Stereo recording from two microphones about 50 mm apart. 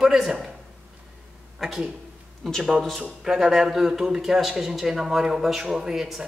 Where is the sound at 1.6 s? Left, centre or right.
Centre.